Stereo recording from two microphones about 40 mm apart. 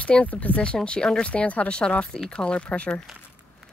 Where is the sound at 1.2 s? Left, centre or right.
Left.